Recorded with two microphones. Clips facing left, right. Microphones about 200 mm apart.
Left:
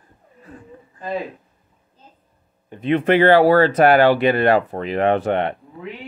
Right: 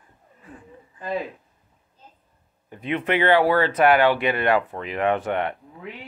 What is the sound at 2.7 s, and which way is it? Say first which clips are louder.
Speech: left 7 dB; 30° left (ahead or behind).